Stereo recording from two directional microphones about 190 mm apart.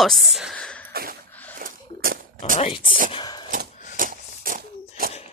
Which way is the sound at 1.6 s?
45° right (ahead or behind).